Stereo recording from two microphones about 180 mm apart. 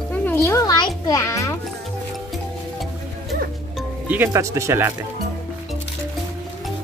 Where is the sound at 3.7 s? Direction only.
10° right (ahead or behind).